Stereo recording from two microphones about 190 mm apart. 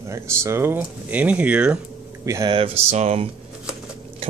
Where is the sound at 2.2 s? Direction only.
20° right (ahead or behind).